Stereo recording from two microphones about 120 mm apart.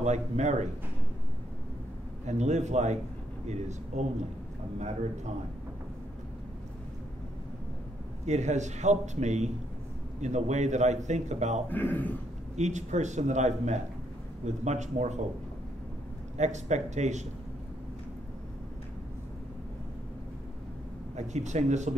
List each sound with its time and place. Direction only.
0.0 s a man's voice: 75° right (ahead or behind)
2.2 s a man's voice: 75° right (ahead or behind)
8.3 s a man's voice: 75° right (ahead or behind)
11.7 s a man's voice: 15° left (ahead or behind)
12.5 s a man's voice: 75° right (ahead or behind)
16.3 s a man's voice: 75° right (ahead or behind)
21.2 s a man's voice: 75° right (ahead or behind)